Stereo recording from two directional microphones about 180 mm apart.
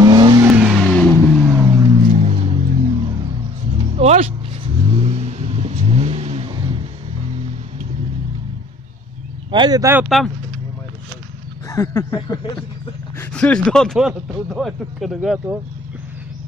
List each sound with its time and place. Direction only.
0.0 s vehicle: 25° right (ahead or behind)
0.5 s vehicle: 5° right (ahead or behind)
2.1 s music: 40° right (ahead or behind)
3.7 s vehicle: 35° right (ahead or behind)
9.5 s speech: 25° right (ahead or behind)
10.0 s speech: centre (ahead or behind)
11.7 s speech: 15° left (ahead or behind)
12.2 s a sound: 20° left (ahead or behind)
13.2 s speech: 5° left (ahead or behind)